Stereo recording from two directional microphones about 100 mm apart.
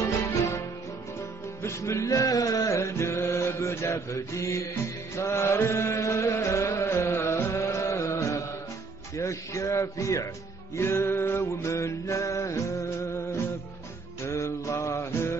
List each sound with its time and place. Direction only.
0.0 s music: 30° left (ahead or behind)
1.6 s music: 30° left (ahead or behind)
5.1 s chant: 25° left (ahead or behind)
9.1 s speech: 30° left (ahead or behind)
10.8 s mantra: 25° left (ahead or behind)
14.2 s music: 30° left (ahead or behind)